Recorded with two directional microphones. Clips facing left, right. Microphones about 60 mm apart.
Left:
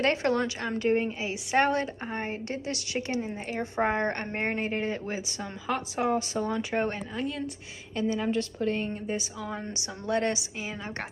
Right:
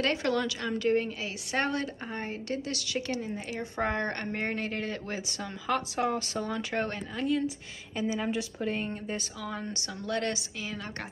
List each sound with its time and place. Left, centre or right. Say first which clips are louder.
0.0 s a woman's voice: left 3 dB; left
5.1 s a woman's voice: left 1 dB; centre
9.5 s a woman's voice: right 2 dB; left